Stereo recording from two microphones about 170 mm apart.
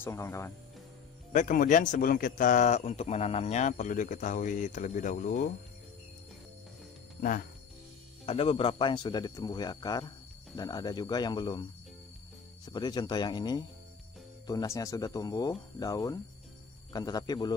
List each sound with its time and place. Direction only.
0.0 s speech: 15° left (ahead or behind)
1.3 s speech: 50° left (ahead or behind)
7.2 s speech: 55° left (ahead or behind)
8.3 s speech: 35° left (ahead or behind)
12.6 s speech: 25° left (ahead or behind)